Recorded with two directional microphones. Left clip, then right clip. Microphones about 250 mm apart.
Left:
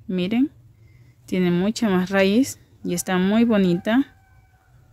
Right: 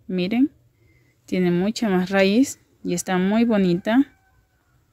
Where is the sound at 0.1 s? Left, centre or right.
Centre.